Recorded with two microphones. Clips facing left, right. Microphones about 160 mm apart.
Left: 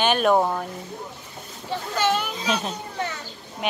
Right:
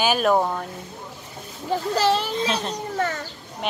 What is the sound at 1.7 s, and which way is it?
Speech, 35° right (ahead or behind).